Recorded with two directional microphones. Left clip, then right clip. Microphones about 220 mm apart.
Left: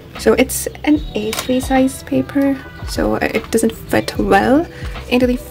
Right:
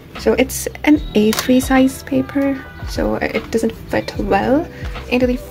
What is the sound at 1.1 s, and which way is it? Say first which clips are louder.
Speech: right 4 dB; 25° right (ahead or behind).